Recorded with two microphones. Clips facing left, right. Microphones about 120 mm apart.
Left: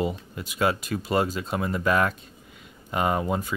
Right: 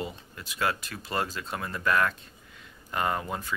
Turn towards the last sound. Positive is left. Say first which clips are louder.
# left 5 dB
turn(degrees=20)  # may be behind; listen again after turning